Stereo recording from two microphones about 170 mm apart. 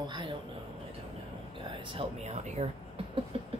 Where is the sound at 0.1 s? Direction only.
25° right (ahead or behind).